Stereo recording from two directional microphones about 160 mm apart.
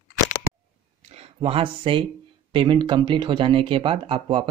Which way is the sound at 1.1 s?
40° right (ahead or behind).